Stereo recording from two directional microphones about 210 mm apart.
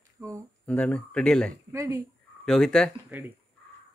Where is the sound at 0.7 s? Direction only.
5° left (ahead or behind).